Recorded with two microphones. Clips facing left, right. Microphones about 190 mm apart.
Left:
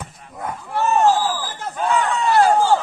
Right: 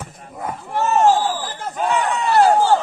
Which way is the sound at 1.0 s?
25° right (ahead or behind).